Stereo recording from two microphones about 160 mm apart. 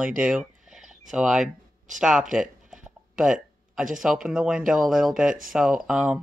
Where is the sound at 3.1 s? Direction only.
5° right (ahead or behind).